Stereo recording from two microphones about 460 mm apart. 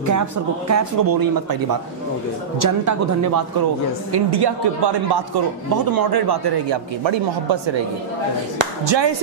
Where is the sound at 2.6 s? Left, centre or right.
Right.